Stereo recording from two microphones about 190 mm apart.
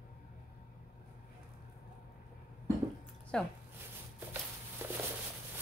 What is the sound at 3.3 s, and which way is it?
Speech, 5° left (ahead or behind).